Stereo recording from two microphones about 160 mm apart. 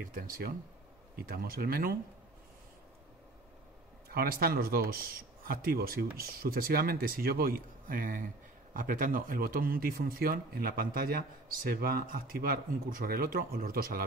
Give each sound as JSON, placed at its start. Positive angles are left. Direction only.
{"t": 0.0, "sound": "speech", "side_deg": -65}
{"t": 4.1, "sound": "speech", "side_deg": -70}